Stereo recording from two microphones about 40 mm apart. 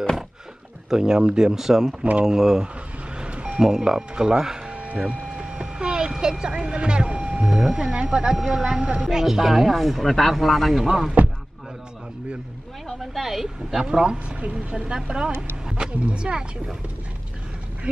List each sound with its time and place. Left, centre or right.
0.8 s speech: centre
3.2 s reversing beeps: right
3.6 s speech: centre
4.1 s a woman's voice: right
4.6 s a sound: right
8.4 s speech: centre
11.2 s a sound: right
13.0 s speech: centre
14.0 s a woman's voice: right